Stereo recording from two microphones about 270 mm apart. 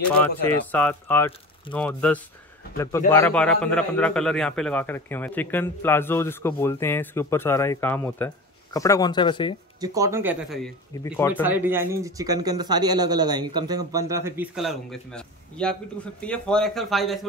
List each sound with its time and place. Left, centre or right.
0.1 s a man's voice: centre
9.8 s speech: centre
11.1 s a man's voice: centre
11.4 s speech: centre